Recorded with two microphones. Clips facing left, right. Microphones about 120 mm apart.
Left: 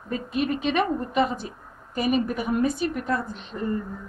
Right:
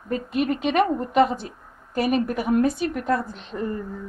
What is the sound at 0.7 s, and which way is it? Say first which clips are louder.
Speech: right 7 dB; 50° right (ahead or behind).